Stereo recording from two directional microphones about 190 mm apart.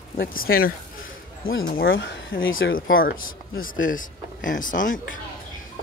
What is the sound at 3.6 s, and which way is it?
Speech, 45° left (ahead or behind).